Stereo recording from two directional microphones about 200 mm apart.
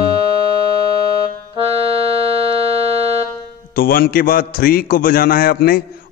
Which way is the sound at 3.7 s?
45° left (ahead or behind).